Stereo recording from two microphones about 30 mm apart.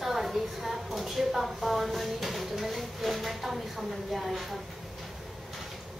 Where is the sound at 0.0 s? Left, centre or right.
Centre.